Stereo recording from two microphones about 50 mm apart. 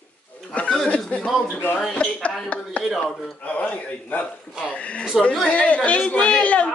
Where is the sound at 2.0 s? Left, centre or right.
Left.